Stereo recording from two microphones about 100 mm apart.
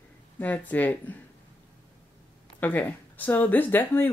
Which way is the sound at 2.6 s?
15° left (ahead or behind).